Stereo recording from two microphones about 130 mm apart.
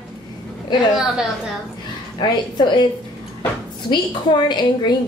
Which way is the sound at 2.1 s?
35° left (ahead or behind).